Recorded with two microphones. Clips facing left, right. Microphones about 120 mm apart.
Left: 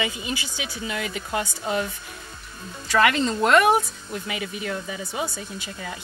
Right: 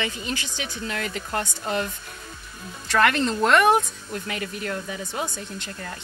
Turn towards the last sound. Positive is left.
turn(degrees=5)  # may be behind; listen again after turning